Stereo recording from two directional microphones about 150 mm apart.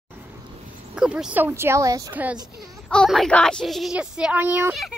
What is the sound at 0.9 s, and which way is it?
Speech, 5° right (ahead or behind).